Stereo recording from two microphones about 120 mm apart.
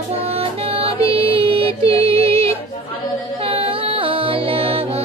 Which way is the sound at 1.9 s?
50° right (ahead or behind).